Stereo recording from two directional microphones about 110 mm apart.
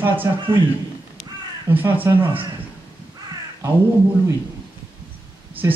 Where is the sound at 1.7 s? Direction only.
15° right (ahead or behind).